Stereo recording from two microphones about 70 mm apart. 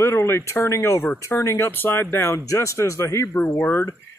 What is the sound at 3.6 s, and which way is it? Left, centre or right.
Speech, left.